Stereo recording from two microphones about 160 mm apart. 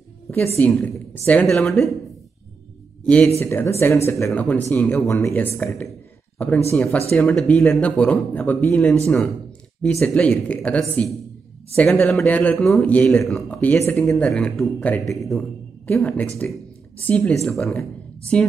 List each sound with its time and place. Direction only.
0.6 s a man's voice: 10° left (ahead or behind)
3.3 s a man's voice: 15° left (ahead or behind)